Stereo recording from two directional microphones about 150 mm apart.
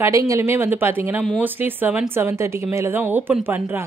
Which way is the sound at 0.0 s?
20° right (ahead or behind).